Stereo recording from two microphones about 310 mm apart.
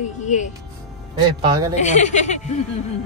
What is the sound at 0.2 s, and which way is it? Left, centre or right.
Speech, left.